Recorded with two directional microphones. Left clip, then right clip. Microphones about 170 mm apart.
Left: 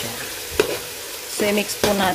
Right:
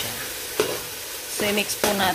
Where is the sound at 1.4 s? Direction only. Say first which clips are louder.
Left 3 dB; 15° left (ahead or behind).